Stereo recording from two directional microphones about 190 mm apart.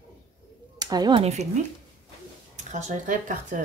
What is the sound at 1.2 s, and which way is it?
Speech, 35° right (ahead or behind).